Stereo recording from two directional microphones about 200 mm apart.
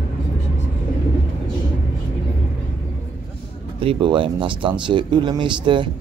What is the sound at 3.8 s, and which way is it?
Speech, 25° right (ahead or behind).